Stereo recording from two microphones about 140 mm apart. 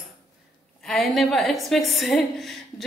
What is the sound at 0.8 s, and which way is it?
A woman's voice, centre (ahead or behind).